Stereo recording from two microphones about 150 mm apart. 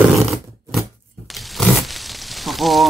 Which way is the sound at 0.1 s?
Centre (ahead or behind).